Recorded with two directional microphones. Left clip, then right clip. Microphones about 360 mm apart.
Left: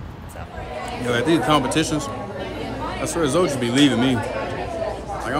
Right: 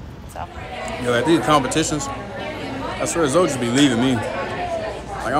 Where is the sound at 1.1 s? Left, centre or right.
Centre.